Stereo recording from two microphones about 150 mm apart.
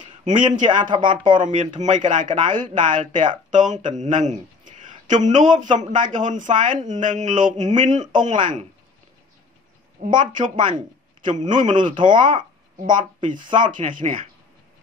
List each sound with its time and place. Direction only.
0.0 s speech: 55° right (ahead or behind)
0.7 s speech: 30° right (ahead or behind)
1.4 s speech: 60° right (ahead or behind)
10.2 s speech: 60° right (ahead or behind)
10.5 s speech: 30° right (ahead or behind)
11.2 s speech: 60° right (ahead or behind)
12.2 s a sound: 60° right (ahead or behind)
13.6 s speech: 60° right (ahead or behind)